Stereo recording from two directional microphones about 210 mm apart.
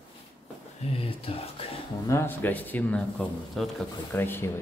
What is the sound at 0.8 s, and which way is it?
Speech, 25° left (ahead or behind).